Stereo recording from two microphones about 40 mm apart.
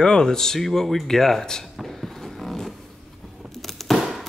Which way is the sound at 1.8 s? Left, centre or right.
Centre.